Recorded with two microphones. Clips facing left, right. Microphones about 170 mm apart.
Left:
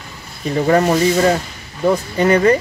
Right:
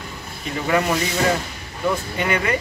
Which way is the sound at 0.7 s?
40° left (ahead or behind).